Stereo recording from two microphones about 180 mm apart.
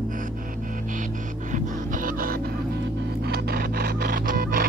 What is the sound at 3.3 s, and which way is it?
Music, 60° right (ahead or behind).